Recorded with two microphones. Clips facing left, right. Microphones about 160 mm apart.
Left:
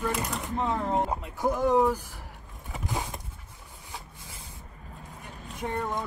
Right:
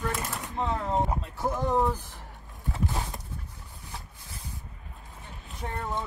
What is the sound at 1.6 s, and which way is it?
Speech, centre (ahead or behind).